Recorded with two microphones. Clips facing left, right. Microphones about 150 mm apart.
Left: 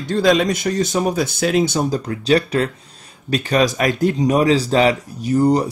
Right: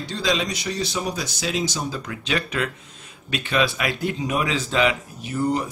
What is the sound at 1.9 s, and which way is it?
Speech, 35° left (ahead or behind).